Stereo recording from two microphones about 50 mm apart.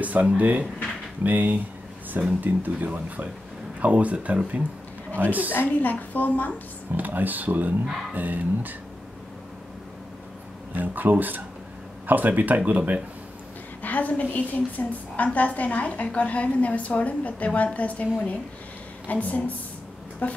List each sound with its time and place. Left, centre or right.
0.0 s speech: right
5.5 s a woman's voice: left
7.0 s speech: right
10.7 s speech: right
13.8 s a woman's voice: left
19.0 s a woman's voice: left